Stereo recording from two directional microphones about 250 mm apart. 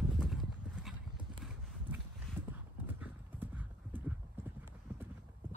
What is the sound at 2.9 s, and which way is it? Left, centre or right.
Clip-clop, centre.